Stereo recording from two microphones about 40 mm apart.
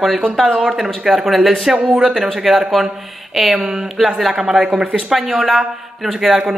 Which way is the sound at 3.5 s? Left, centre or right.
Centre.